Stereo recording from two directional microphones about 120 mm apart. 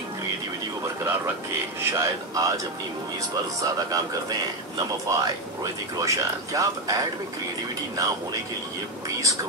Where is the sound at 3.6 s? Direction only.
30° right (ahead or behind).